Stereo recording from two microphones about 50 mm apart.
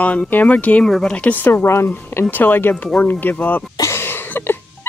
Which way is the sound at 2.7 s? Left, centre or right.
Left.